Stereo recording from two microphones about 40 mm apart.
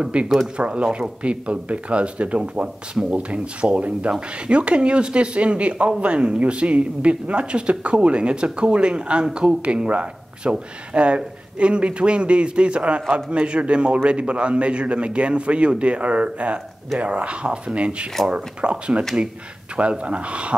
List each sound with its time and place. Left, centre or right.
0.1 s speech: right
9.6 s speech: right